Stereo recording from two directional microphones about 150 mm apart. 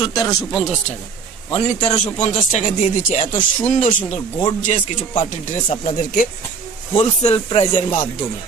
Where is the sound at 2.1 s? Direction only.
50° left (ahead or behind).